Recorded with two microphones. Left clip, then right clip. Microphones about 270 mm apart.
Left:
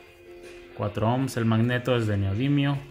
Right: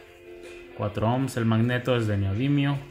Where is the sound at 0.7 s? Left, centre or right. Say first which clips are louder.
Even; centre.